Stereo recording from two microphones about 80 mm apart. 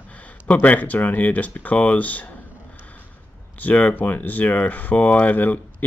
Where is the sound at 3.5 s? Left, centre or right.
Left.